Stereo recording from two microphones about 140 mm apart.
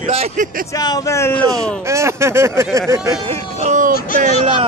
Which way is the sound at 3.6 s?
65° right (ahead or behind).